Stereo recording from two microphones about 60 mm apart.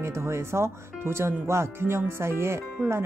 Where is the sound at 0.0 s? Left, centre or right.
Right.